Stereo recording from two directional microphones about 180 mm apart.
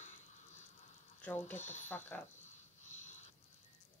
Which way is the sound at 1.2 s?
10° left (ahead or behind).